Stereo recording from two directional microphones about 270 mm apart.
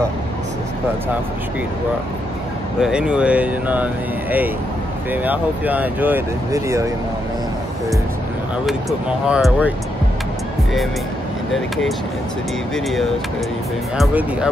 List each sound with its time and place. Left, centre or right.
2.8 s speech: centre
9.3 s speech: centre
13.9 s speech: centre